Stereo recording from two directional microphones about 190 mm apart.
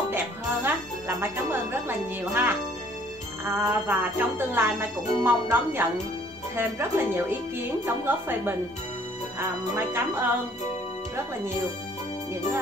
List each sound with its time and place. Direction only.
0.7 s music: 10° right (ahead or behind)
9.8 s music: 10° right (ahead or behind)